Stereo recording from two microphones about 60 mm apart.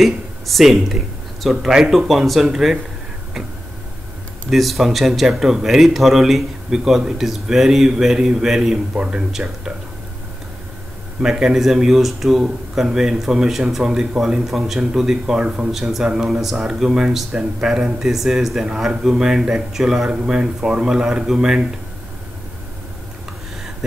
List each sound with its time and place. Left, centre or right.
0.0 s speech: centre
4.5 s speech: centre
8.9 s speech: centre
11.1 s speech: centre
15.7 s speech: centre
16.3 s speech: centre